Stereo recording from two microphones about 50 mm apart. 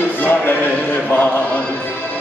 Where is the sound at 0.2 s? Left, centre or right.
Left.